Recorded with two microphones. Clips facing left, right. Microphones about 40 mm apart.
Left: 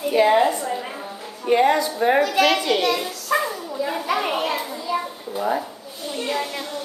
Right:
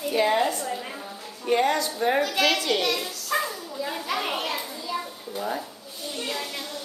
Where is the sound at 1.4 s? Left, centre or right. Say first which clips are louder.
Left 5 dB; centre.